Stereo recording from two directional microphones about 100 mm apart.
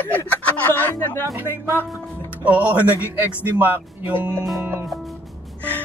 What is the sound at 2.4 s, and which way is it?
Speech, 15° right (ahead or behind).